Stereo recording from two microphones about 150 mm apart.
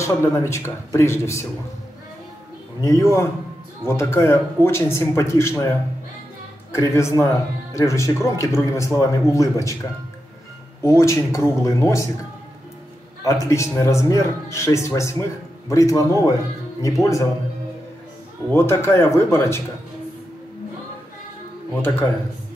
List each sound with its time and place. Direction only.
0.0 s speech: 20° left (ahead or behind)
2.8 s speech: 20° left (ahead or behind)
6.7 s speech: 20° left (ahead or behind)
10.8 s speech: 20° left (ahead or behind)
13.2 s speech: 20° left (ahead or behind)
18.5 s speech: 15° left (ahead or behind)